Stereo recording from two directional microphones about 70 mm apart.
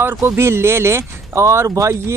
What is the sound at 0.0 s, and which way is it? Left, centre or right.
Speech, right.